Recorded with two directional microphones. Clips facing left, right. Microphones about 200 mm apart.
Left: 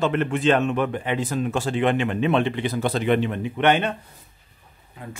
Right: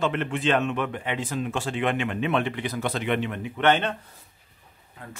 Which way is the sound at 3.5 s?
15° left (ahead or behind).